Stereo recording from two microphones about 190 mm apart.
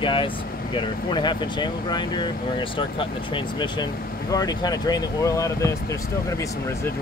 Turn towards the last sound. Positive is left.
turn(degrees=15)  # may be behind; listen again after turning